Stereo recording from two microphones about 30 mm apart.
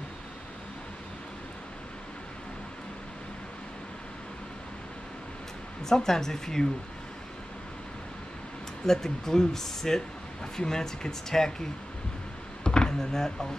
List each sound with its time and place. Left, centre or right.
5.9 s speech: centre
8.8 s speech: centre
12.6 s a sound: left